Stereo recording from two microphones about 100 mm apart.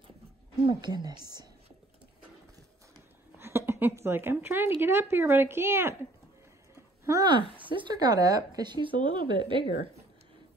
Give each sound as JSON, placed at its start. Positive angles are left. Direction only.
{"t": 0.7, "sound": "a woman's voice", "side_deg": -50}
{"t": 3.3, "sound": "a woman's voice", "side_deg": -25}
{"t": 7.2, "sound": "speech", "side_deg": -55}